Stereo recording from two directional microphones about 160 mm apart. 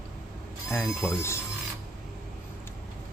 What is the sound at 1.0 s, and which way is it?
Speech, 15° left (ahead or behind).